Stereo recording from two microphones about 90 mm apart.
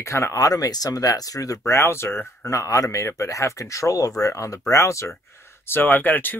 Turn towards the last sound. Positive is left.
turn(degrees=20)  # may be behind; listen again after turning